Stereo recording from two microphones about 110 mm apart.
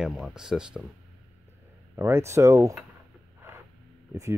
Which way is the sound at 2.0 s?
20° right (ahead or behind).